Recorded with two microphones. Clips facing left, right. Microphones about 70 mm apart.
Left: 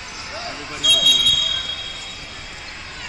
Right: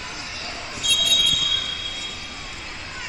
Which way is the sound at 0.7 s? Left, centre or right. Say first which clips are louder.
Left 5 dB; left.